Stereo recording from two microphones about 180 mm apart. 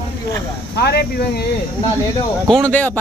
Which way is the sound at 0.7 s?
65° left (ahead or behind).